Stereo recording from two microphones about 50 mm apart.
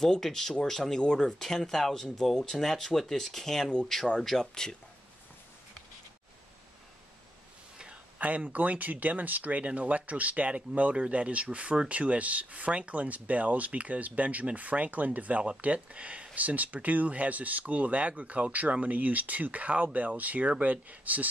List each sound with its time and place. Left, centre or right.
0.0 s speech: centre
8.2 s speech: right